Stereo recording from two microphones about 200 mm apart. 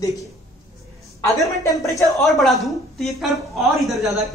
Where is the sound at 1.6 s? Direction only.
15° left (ahead or behind).